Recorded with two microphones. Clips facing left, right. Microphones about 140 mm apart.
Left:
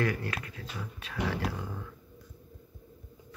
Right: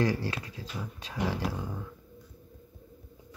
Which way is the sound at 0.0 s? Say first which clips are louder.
Right 3 dB; 30° right (ahead or behind).